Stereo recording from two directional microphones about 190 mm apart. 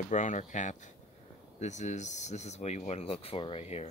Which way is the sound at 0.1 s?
40° left (ahead or behind).